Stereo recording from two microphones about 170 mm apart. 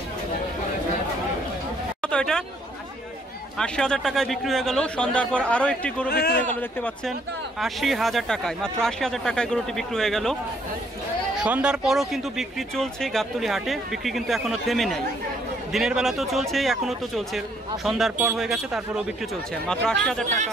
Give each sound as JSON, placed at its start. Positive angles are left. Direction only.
{"t": 2.0, "sound": "a sound", "side_deg": 5}
{"t": 3.5, "sound": "speech", "side_deg": 5}
{"t": 6.0, "sound": "a man's voice", "side_deg": 65}
{"t": 7.6, "sound": "speech", "side_deg": 0}
{"t": 11.3, "sound": "speech", "side_deg": -5}